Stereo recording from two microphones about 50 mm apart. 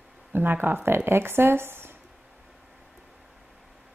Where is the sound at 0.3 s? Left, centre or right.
Right.